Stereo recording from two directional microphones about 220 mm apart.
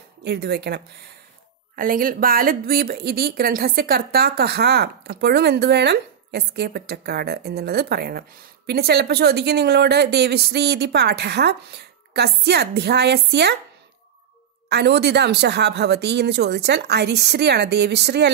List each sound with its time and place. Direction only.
0.2 s speech: 50° right (ahead or behind)
14.7 s speech: 50° right (ahead or behind)